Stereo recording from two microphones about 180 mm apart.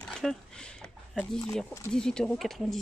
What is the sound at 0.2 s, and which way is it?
Speech, centre (ahead or behind).